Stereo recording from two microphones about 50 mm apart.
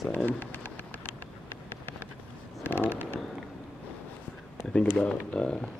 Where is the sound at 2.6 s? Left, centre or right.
Left.